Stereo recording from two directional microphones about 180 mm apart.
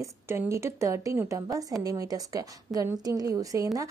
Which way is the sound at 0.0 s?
15° right (ahead or behind).